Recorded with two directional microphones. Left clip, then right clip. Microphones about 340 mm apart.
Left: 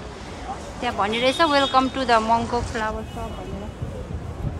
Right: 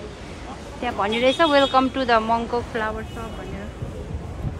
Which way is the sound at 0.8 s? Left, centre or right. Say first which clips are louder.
Even; centre.